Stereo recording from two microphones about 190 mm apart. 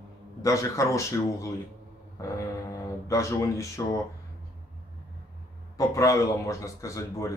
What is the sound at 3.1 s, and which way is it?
Speech, 15° left (ahead or behind).